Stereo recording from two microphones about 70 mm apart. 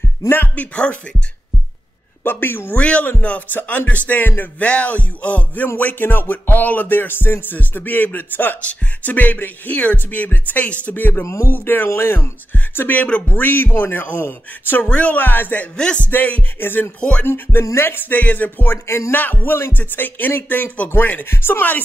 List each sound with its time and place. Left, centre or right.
0.3 s music: left
2.2 s a woman's voice: left
2.7 s a man's voice: centre
3.1 s music: centre
11.2 s speech: left
11.5 s music: left
17.2 s a woman's voice: left
17.7 s music: left
18.9 s a woman's voice: left
19.1 s music: left